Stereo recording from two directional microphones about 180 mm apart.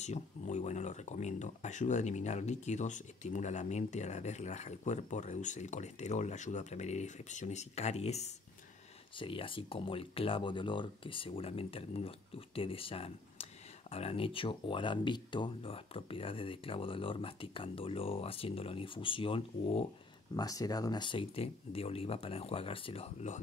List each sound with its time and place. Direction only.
0.0 s speech: 40° left (ahead or behind)
20.3 s speech: 20° left (ahead or behind); by 23.4 s 40° left (ahead or behind)